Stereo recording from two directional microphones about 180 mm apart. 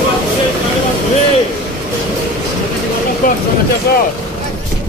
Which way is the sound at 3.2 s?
50° left (ahead or behind).